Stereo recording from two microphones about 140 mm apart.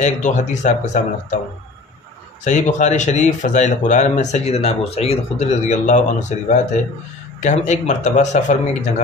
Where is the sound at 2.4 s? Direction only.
60° left (ahead or behind).